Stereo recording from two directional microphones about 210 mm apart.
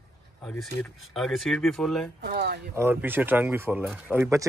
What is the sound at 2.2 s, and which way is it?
Speech, 50° right (ahead or behind).